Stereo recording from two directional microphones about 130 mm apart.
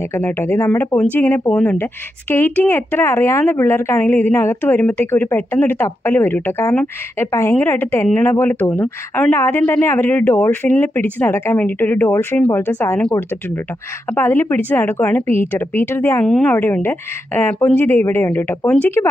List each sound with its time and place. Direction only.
0.1 s speech: 20° left (ahead or behind)
14.1 s speech: 20° left (ahead or behind)